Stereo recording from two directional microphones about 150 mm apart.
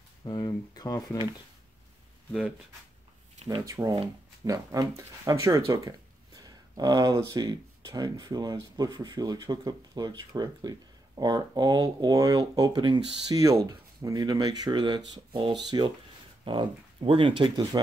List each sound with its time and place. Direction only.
0.2 s speech: 30° left (ahead or behind)
3.6 s speech: 20° right (ahead or behind)